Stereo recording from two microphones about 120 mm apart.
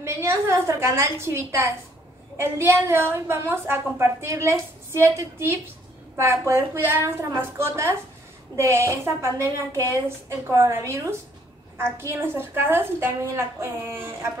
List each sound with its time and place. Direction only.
0.0 s a woman's voice: 25° right (ahead or behind)